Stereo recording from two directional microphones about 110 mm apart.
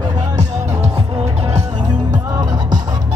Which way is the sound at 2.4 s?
40° right (ahead or behind).